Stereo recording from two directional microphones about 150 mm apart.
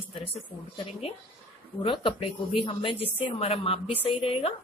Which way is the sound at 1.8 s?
35° left (ahead or behind).